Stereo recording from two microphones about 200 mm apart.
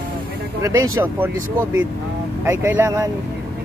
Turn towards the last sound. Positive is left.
turn(degrees=-15)  # may be behind; listen again after turning